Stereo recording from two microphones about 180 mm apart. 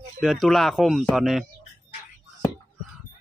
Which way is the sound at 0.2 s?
Centre (ahead or behind).